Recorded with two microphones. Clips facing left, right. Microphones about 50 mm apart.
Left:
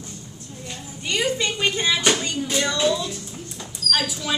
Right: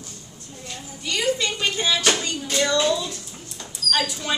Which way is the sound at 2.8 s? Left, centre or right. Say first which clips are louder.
Even; centre.